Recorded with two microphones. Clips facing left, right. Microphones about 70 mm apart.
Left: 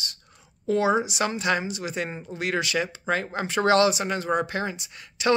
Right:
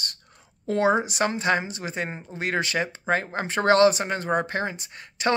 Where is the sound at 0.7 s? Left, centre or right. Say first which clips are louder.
Even; right.